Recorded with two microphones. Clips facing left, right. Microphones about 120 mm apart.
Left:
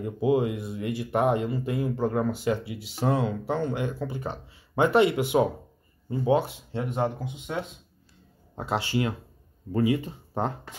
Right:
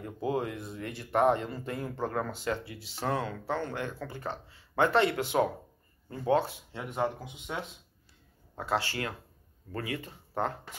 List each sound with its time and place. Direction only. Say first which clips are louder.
0.0 s speech: left 8 dB; 10° left (ahead or behind)
6.7 s speech: left 5 dB; 25° left (ahead or behind)
8.5 s speech: left 4 dB; 20° left (ahead or behind)